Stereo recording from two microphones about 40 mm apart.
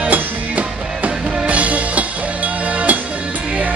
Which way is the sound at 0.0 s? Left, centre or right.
Right.